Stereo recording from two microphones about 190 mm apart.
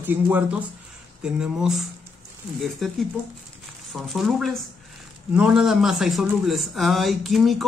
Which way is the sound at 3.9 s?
Centre (ahead or behind).